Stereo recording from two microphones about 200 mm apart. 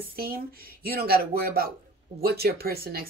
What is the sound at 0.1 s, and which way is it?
Speech, 50° right (ahead or behind).